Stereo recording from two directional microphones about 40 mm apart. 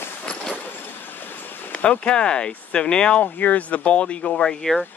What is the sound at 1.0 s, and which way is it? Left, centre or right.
Train, left.